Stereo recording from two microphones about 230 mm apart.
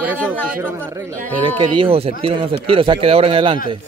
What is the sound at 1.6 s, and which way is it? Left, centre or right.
Speech, right.